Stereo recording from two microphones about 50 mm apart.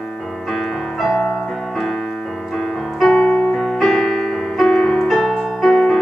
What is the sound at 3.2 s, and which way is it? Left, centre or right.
Keyboard, left.